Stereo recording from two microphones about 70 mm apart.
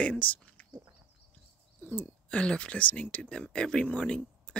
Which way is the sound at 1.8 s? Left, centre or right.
Left.